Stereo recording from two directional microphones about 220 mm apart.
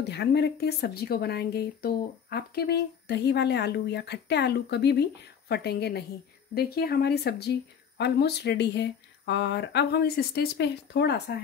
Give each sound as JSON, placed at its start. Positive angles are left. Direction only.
{"t": 0.0, "sound": "speech", "side_deg": 50}